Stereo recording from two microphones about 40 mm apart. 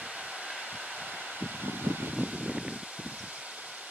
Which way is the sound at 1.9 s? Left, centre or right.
Right.